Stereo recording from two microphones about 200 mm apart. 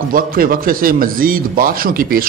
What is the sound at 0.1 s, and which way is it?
A man's voice, 45° right (ahead or behind).